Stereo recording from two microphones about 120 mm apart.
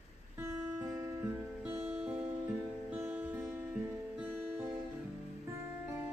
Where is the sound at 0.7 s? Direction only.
20° right (ahead or behind).